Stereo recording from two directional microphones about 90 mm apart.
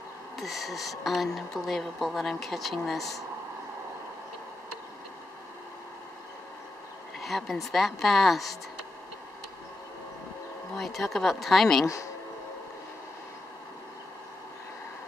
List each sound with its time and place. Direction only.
0.4 s speech: centre (ahead or behind)
7.2 s speech: centre (ahead or behind)
10.8 s speech: centre (ahead or behind)
11.8 s speech: 35° left (ahead or behind)